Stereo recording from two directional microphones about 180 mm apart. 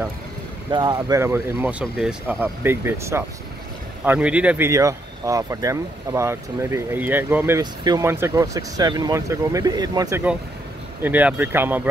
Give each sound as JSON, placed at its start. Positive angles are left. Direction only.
{"t": 0.7, "sound": "speech", "side_deg": -25}
{"t": 11.0, "sound": "speech", "side_deg": -10}